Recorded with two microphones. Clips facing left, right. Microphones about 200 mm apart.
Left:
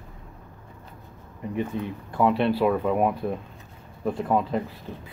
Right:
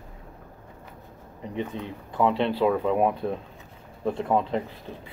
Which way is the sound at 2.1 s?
15° left (ahead or behind).